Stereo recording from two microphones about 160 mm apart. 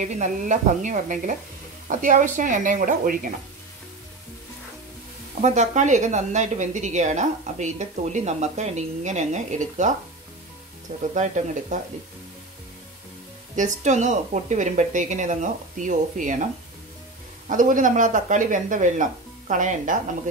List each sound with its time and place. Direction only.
0.0 s speech: 50° right (ahead or behind)
5.4 s speech: 45° right (ahead or behind)
11.1 s speech: 50° right (ahead or behind)
13.6 s speech: 50° right (ahead or behind)
17.5 s speech: 55° right (ahead or behind)